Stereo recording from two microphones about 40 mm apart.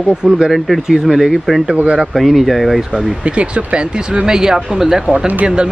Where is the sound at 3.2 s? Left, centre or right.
Right; by 5.0 s centre.